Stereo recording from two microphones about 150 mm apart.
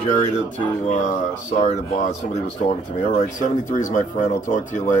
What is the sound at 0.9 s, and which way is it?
Speech, 50° left (ahead or behind).